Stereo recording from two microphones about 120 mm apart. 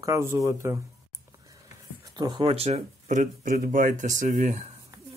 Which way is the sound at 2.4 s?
60° right (ahead or behind).